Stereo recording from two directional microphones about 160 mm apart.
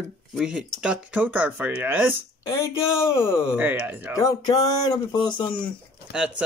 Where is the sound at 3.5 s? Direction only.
10° right (ahead or behind).